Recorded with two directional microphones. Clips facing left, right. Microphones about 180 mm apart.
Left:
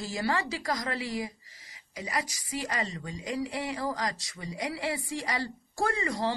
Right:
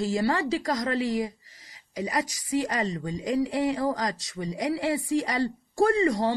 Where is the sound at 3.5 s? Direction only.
25° right (ahead or behind).